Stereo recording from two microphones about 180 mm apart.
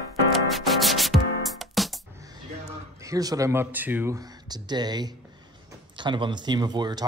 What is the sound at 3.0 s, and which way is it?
Speech, 20° right (ahead or behind).